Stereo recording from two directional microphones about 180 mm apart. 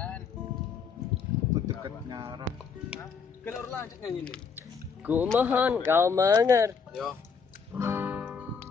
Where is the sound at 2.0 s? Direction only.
25° right (ahead or behind).